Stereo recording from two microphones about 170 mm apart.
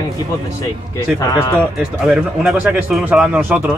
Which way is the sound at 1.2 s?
20° left (ahead or behind).